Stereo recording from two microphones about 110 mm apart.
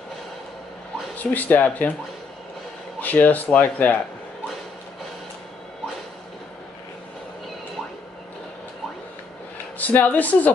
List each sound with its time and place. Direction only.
1.1 s speech: 15° left (ahead or behind)
3.0 s speech: 15° left (ahead or behind)
9.8 s speech: 15° left (ahead or behind)